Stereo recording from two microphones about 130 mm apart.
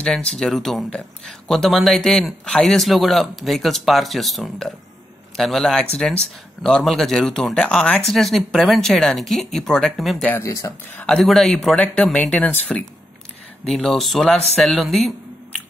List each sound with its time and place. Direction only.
0.0 s speech: 5° left (ahead or behind)
10.4 s speech: 25° left (ahead or behind)
11.0 s speech: 5° left (ahead or behind)